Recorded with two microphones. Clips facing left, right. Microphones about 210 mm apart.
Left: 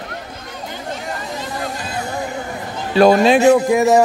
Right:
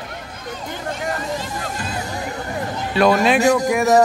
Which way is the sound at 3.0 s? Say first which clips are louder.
Left 4 dB; 30° left (ahead or behind).